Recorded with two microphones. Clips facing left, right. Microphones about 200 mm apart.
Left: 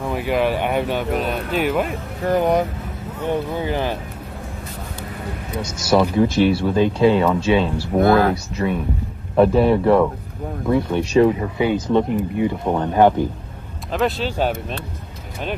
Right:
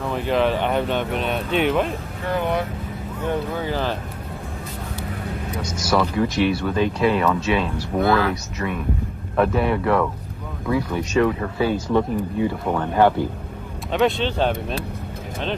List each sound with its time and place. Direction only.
0.1 s speech: 10° left (ahead or behind)
2.2 s speech: 40° left (ahead or behind)
3.7 s speech: 15° left (ahead or behind)
5.9 s speech: 25° left (ahead or behind)
8.0 s speech: 45° left (ahead or behind)
8.3 s speech: 30° left (ahead or behind)
11.3 s speech: 15° left (ahead or behind)
13.9 s speech: centre (ahead or behind)